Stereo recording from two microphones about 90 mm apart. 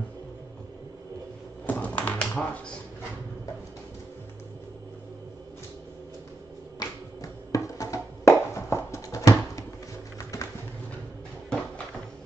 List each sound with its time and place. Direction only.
1.7 s tap: 15° left (ahead or behind)
6.8 s a sound: 40° left (ahead or behind)
10.1 s typing: 35° left (ahead or behind)